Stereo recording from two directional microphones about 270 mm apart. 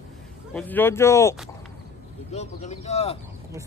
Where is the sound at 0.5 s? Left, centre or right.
Centre.